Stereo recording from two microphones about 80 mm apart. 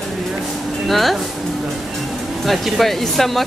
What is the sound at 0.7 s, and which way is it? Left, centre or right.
Music, centre.